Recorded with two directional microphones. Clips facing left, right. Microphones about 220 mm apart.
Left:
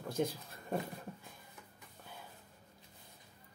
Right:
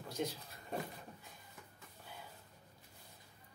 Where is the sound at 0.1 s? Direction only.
50° left (ahead or behind).